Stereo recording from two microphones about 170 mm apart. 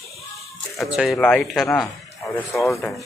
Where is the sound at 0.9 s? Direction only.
Centre (ahead or behind).